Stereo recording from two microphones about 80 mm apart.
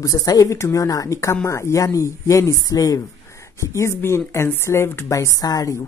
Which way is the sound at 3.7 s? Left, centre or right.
Left.